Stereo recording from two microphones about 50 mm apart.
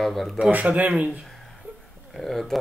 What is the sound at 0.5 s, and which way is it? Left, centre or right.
Speech, right.